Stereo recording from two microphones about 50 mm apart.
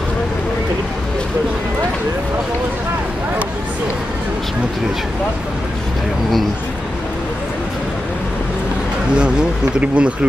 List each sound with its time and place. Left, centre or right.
9.2 s speech: right